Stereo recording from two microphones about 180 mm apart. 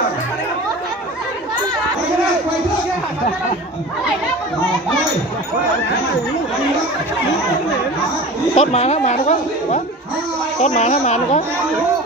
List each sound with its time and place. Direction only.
8.5 s speech: 40° left (ahead or behind)